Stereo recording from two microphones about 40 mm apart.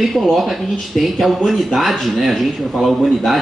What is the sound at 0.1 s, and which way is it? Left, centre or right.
Speech, centre.